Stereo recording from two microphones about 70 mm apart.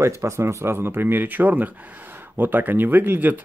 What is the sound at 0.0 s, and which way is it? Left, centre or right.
Speech, right.